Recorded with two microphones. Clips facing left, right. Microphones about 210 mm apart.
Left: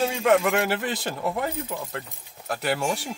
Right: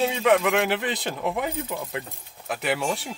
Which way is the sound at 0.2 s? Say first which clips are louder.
Even; centre (ahead or behind).